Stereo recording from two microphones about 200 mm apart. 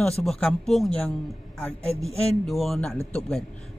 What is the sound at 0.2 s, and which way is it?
Speech, 5° left (ahead or behind).